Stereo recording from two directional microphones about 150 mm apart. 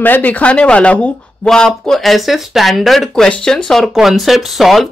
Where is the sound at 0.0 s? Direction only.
10° left (ahead or behind).